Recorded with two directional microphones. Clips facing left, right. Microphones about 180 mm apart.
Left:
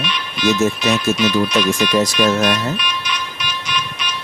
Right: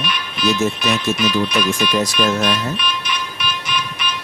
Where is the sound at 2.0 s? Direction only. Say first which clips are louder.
Left 2 dB; 50° left (ahead or behind).